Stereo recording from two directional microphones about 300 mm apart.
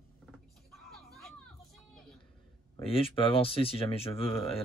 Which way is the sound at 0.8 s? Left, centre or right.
Centre.